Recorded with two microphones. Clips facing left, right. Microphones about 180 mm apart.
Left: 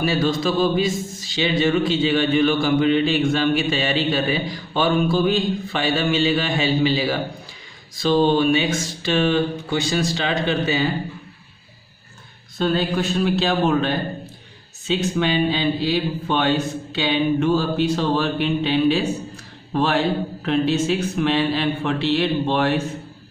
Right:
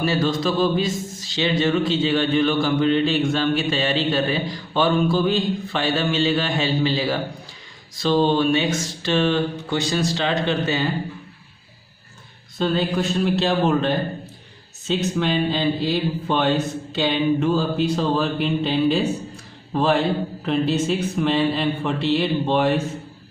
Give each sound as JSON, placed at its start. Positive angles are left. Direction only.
{"t": 0.0, "sound": "a man's voice", "side_deg": 10}
{"t": 12.5, "sound": "a man's voice", "side_deg": 0}